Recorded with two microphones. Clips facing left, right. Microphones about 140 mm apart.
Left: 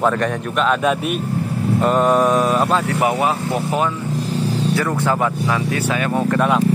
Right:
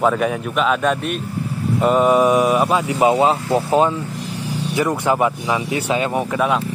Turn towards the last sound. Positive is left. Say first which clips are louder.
# left 2 dB
turn(degrees=-5)  # may be behind; listen again after turning